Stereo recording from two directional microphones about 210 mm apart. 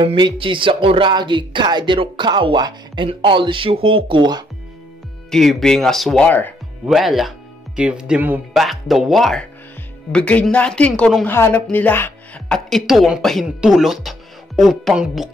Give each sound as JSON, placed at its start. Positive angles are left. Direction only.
{"t": 0.0, "sound": "speech", "side_deg": -25}
{"t": 5.3, "sound": "speech", "side_deg": 0}